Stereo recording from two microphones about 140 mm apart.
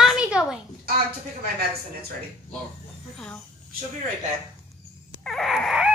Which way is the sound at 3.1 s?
5° left (ahead or behind).